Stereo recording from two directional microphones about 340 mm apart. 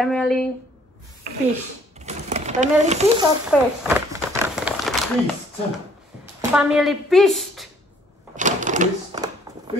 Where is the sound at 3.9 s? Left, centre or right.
Centre.